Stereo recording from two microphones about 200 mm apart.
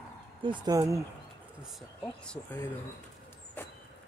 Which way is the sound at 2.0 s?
5° left (ahead or behind).